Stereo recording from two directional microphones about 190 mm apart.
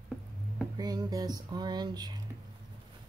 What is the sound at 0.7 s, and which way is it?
Speech, 20° right (ahead or behind).